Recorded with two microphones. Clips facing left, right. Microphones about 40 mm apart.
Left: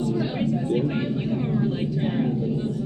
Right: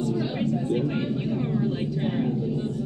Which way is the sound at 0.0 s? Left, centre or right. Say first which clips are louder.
Left 1 dB; centre.